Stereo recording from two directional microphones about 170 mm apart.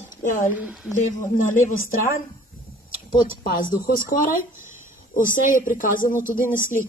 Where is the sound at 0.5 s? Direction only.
10° right (ahead or behind).